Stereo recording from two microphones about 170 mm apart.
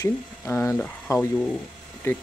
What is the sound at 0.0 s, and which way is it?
Speech, 15° left (ahead or behind).